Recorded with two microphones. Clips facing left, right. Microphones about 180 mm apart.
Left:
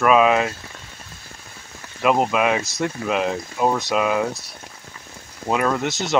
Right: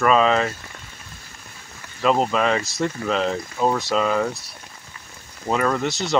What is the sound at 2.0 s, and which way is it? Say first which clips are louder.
Speech: left 1 dB; 10° left (ahead or behind).